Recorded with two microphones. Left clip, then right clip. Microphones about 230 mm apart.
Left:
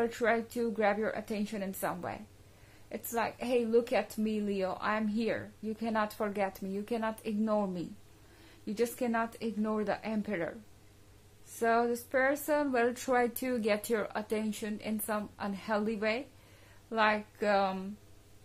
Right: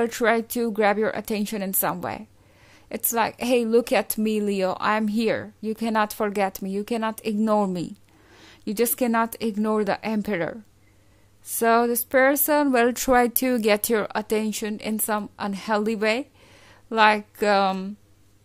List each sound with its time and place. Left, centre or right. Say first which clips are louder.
0.0 s a woman's voice: right 8 dB; right
11.6 s a woman's voice: right 9 dB; right